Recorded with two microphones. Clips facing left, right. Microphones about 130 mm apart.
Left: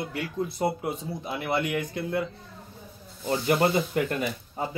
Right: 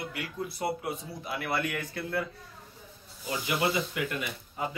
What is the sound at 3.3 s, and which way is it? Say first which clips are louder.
Speech: left 6 dB; 45° left (ahead or behind).